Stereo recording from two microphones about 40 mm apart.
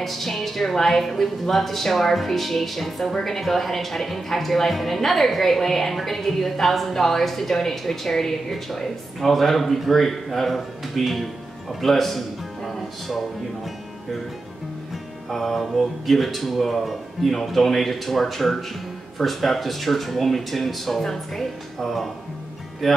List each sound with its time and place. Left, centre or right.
0.0 s speech: centre
15.2 s speech: centre